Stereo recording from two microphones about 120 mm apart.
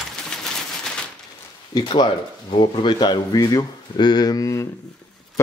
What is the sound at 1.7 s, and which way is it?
Speech, 40° left (ahead or behind).